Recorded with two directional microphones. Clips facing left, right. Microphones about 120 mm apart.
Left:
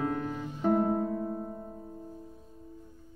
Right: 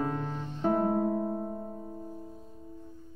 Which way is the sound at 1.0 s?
20° right (ahead or behind).